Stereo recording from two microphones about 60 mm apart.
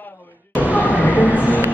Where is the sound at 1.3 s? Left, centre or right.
Left.